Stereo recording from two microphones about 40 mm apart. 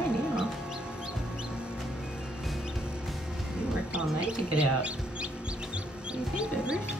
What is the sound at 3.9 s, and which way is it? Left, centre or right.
Mouse, right.